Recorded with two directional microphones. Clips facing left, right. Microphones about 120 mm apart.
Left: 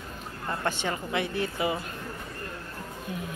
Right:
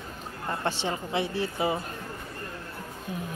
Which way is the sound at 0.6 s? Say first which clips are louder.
Even; 30° right (ahead or behind).